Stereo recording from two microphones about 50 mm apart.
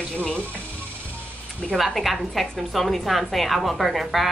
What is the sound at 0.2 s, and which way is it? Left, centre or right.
Speech, left.